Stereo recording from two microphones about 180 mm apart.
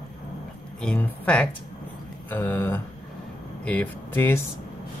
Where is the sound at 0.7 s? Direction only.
10° left (ahead or behind).